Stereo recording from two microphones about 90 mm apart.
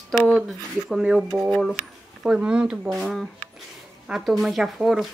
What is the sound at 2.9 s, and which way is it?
A woman's voice, centre (ahead or behind).